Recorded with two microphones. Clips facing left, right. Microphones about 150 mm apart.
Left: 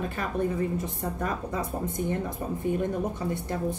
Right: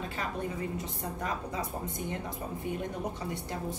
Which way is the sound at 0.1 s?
50° left (ahead or behind).